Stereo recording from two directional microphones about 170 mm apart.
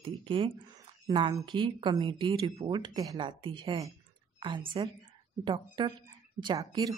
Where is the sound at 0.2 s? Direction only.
30° right (ahead or behind).